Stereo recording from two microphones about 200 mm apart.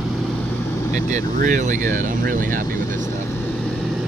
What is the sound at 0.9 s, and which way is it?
Speech, 40° right (ahead or behind).